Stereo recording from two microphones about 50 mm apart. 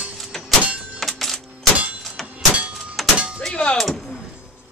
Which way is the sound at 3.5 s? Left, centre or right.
Left.